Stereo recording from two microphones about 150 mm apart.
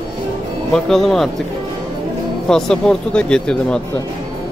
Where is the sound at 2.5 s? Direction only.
5° left (ahead or behind).